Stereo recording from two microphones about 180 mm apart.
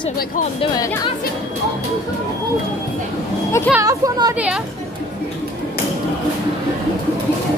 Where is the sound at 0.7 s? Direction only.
20° left (ahead or behind).